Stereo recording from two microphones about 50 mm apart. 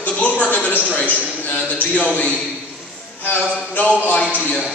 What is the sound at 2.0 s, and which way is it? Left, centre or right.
Speech, left.